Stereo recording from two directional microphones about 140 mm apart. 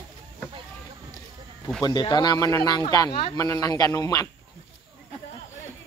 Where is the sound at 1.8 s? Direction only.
30° left (ahead or behind).